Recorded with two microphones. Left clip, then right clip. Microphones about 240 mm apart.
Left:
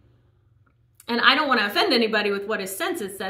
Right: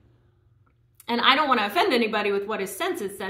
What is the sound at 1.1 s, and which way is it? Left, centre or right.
A woman's voice, centre.